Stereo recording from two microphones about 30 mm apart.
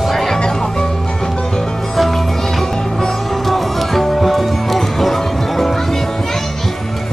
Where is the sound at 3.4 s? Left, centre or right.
Centre.